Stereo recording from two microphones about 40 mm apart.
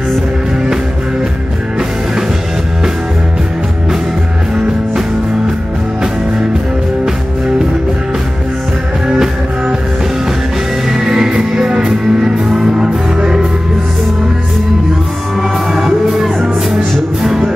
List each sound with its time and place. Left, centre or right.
9.0 s music: centre
10.9 s music: centre
16.7 s music: centre